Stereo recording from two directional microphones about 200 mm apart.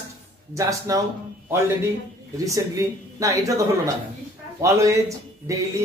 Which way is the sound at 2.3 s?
15° right (ahead or behind).